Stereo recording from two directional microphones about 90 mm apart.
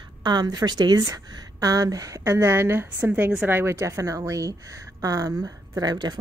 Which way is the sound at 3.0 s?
10° right (ahead or behind).